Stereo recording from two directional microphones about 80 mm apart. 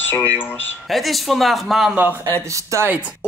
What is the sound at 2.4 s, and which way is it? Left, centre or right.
Speech, right.